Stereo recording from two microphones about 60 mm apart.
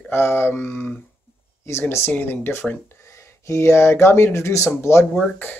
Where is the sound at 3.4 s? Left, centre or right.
Left.